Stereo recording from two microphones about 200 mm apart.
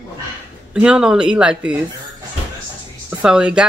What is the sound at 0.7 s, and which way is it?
Speech, 5° right (ahead or behind).